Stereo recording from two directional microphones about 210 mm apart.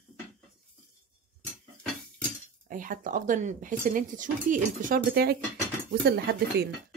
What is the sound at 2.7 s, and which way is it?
Speech, 40° right (ahead or behind).